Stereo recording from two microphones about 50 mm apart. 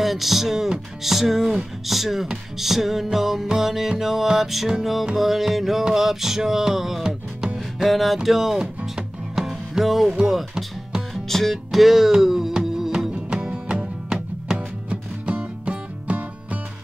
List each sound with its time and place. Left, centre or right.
0.0 s speech: centre
3.4 s music: centre
5.1 s speech: centre
5.9 s music: centre
7.5 s music: centre
11.2 s music: centre; by 16.2 s right